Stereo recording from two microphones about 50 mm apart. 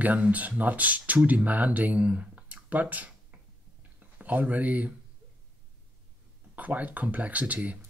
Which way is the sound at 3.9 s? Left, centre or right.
Right.